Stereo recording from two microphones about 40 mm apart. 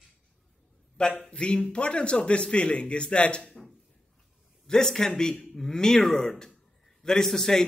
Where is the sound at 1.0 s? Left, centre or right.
Left.